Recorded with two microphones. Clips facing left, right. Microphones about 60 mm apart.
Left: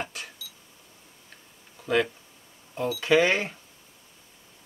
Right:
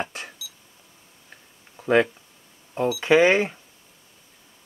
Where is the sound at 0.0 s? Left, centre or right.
Right.